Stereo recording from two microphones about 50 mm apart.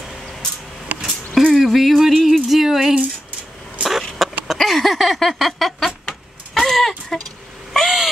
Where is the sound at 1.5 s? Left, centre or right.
Centre.